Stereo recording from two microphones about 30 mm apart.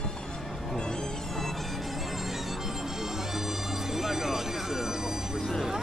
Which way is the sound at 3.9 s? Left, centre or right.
Centre.